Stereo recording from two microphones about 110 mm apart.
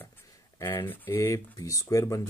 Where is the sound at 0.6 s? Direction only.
20° left (ahead or behind).